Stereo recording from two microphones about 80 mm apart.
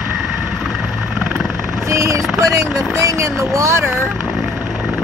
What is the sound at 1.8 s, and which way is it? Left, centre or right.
Vehicle, right.